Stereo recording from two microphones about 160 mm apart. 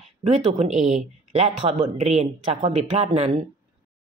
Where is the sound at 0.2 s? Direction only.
45° right (ahead or behind).